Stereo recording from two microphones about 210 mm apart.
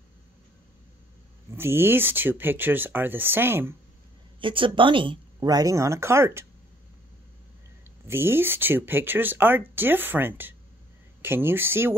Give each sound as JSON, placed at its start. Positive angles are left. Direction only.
{"t": 1.6, "sound": "speech", "side_deg": -10}
{"t": 4.4, "sound": "speech", "side_deg": -25}
{"t": 8.1, "sound": "speech", "side_deg": -10}